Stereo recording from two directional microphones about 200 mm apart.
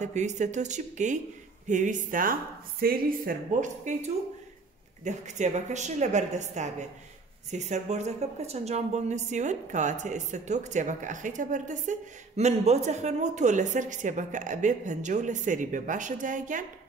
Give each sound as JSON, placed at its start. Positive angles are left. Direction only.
{"t": 0.0, "sound": "a woman's voice", "side_deg": -35}